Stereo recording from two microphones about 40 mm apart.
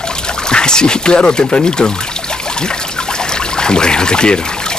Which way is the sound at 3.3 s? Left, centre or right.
Centre.